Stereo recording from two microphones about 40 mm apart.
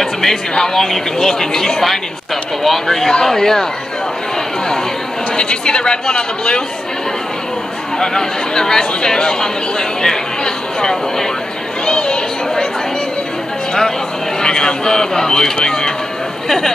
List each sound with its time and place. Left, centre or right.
0.0 s speech: centre
5.3 s speech: left
8.0 s speech: centre
11.8 s chatter: left
14.4 s speech: left